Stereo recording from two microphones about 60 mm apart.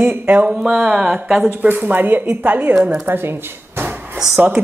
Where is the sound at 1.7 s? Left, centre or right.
Right.